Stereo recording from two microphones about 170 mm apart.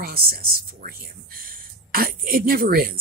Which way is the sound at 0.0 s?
65° right (ahead or behind).